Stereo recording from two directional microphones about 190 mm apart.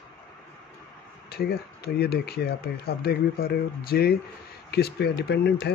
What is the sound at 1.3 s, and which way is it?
Speech, 55° left (ahead or behind).